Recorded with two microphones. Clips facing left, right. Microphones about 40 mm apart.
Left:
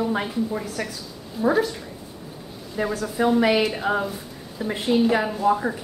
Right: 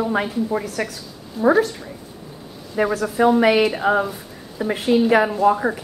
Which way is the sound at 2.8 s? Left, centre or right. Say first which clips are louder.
Right 5 dB; right.